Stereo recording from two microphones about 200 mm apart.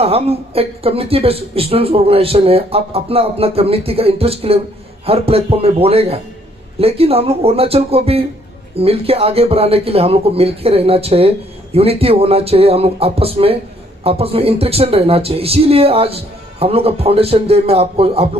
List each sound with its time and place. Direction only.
0.0 s speech: 30° right (ahead or behind)